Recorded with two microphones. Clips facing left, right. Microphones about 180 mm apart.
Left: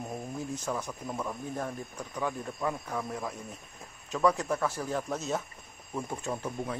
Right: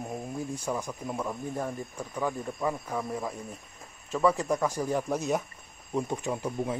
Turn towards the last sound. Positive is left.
turn(degrees=-15)  # may be behind; listen again after turning